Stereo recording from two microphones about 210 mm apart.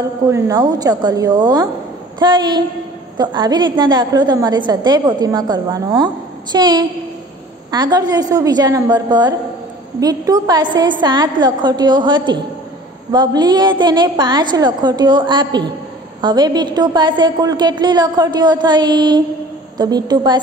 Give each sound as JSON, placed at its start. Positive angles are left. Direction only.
{"t": 0.3, "sound": "a woman's voice", "side_deg": -15}